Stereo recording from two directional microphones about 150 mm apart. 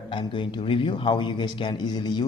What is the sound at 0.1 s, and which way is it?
Speech, 30° left (ahead or behind).